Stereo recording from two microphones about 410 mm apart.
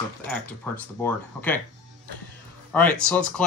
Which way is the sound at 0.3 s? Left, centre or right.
Centre.